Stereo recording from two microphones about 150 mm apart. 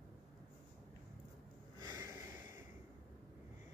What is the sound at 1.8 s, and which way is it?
Snort, 20° right (ahead or behind).